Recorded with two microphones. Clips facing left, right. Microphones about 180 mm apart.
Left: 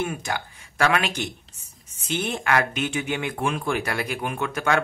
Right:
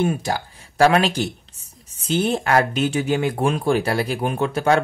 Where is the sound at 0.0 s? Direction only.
35° right (ahead or behind).